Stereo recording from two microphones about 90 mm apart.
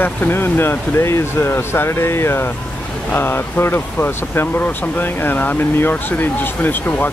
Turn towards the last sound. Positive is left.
turn(degrees=20)  # may be behind; listen again after turning